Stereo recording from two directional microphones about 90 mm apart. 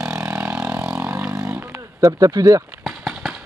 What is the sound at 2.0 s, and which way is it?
Speech, 40° right (ahead or behind).